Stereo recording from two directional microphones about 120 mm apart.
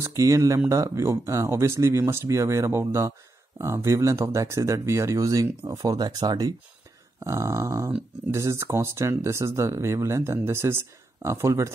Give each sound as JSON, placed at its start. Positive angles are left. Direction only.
{"t": 0.0, "sound": "speech", "side_deg": -25}